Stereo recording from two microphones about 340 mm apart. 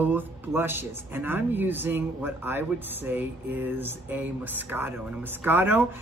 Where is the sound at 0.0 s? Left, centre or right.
Centre.